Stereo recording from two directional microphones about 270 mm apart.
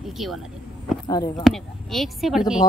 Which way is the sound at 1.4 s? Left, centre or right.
Centre.